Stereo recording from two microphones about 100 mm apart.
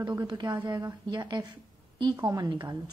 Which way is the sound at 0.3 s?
45° right (ahead or behind).